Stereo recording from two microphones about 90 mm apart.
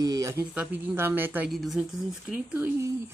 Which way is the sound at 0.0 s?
40° right (ahead or behind).